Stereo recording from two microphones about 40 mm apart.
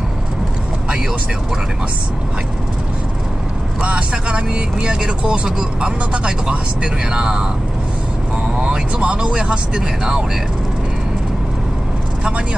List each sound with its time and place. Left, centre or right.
3.8 s speech: right
8.5 s speech: right